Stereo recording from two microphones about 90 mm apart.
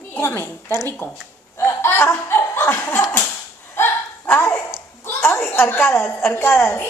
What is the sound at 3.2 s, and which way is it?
Whip, 25° left (ahead or behind).